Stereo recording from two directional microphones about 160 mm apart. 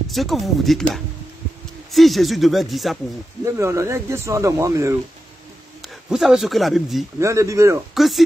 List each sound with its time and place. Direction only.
0.1 s speech: centre (ahead or behind)
3.4 s speech: 20° right (ahead or behind)
6.0 s speech: centre (ahead or behind)
7.2 s speech: 20° right (ahead or behind)
7.9 s speech: centre (ahead or behind)